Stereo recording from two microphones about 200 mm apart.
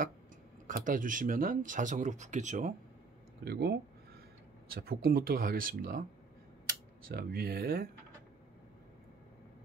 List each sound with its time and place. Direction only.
0.7 s speech: 40° right (ahead or behind)
3.4 s speech: 55° right (ahead or behind)
7.1 s speech: 50° right (ahead or behind)